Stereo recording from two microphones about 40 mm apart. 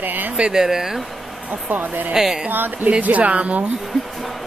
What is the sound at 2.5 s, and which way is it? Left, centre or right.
Speech, right.